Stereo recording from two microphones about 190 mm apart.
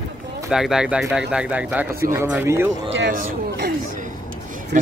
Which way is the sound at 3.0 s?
50° right (ahead or behind).